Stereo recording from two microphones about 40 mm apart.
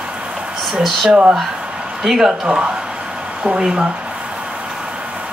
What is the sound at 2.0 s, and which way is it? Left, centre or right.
A woman's voice, centre.